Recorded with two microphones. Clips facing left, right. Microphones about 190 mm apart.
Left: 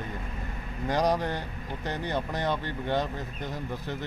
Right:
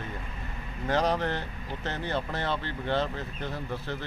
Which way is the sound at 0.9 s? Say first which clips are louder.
Even; 15° left (ahead or behind).